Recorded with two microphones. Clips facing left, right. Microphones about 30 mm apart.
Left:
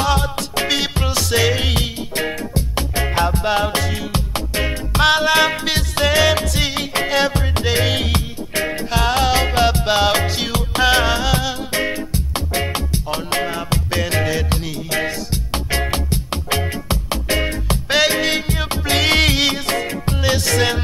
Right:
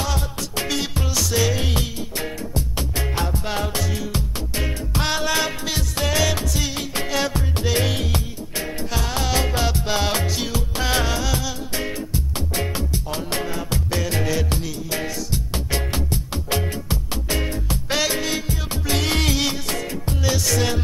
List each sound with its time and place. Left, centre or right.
0.0 s music: left
7.0 s music: left
7.9 s music: left